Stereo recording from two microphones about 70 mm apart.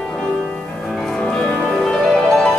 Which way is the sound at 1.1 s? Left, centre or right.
Centre.